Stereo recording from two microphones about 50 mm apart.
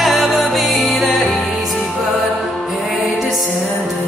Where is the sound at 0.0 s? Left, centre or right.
Centre.